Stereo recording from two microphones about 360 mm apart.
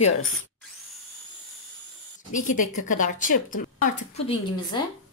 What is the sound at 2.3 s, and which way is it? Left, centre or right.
A woman's voice, left.